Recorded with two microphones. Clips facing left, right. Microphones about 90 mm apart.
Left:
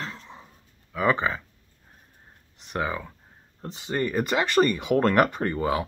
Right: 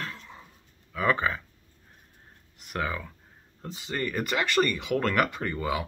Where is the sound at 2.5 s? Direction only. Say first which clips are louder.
Left 3 dB; 20° left (ahead or behind).